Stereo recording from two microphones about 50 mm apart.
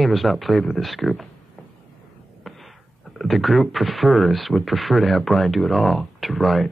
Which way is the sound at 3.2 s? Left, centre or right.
Centre.